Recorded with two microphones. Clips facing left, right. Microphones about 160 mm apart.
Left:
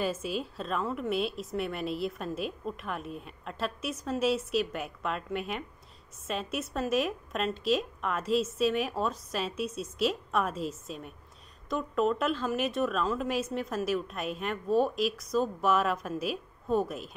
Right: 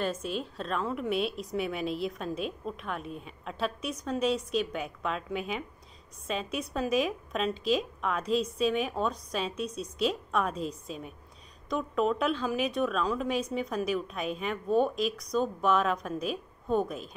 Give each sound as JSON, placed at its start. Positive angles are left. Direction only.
{"t": 0.0, "sound": "a woman's voice", "side_deg": 5}